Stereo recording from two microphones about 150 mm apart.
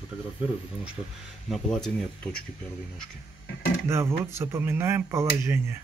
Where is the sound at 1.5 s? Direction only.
Centre (ahead or behind).